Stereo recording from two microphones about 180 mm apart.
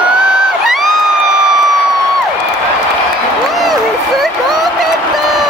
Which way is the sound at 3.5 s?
Centre (ahead or behind).